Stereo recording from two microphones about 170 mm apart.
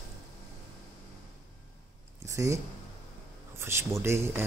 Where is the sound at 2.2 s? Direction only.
15° right (ahead or behind).